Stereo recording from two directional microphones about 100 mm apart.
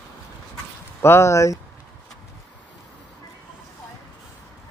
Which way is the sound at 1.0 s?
30° left (ahead or behind).